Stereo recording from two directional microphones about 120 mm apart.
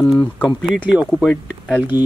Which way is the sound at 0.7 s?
5° right (ahead or behind).